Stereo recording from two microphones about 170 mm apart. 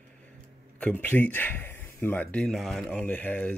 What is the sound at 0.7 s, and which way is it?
Speech, 10° left (ahead or behind).